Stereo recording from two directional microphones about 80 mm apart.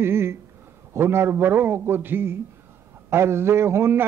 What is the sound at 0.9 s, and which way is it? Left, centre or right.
A man's voice, right.